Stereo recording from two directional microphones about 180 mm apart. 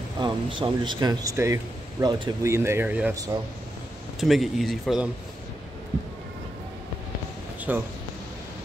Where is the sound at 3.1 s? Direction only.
20° right (ahead or behind).